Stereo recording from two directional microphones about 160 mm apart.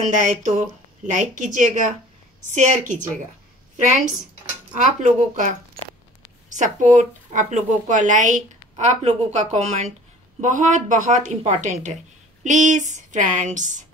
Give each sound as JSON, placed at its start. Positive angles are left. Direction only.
{"t": 0.0, "sound": "speech", "side_deg": -50}